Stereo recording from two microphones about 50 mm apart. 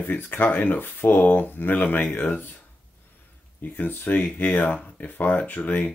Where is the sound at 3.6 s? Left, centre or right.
Left.